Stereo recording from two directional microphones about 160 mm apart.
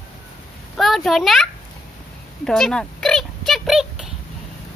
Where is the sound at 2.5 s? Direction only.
5° left (ahead or behind).